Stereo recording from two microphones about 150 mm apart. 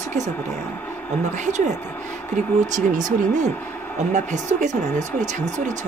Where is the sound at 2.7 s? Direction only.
55° right (ahead or behind).